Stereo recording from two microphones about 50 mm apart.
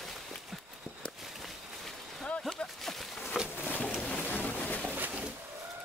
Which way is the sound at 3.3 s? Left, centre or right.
Centre.